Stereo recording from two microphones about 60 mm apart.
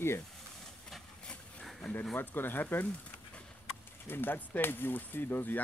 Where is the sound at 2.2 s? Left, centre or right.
Left.